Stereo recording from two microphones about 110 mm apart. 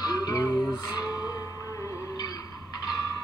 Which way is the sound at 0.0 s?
35° left (ahead or behind).